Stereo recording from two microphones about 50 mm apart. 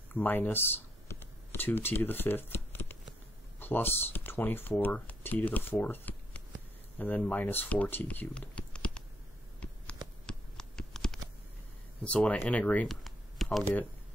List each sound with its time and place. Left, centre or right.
0.1 s speech: left
1.0 s shuffling cards: left
3.5 s speech: left
8.4 s typing: left
9.6 s a sound: left
10.6 s computer keyboard: centre
12.0 s speech: left
12.8 s computer keyboard: centre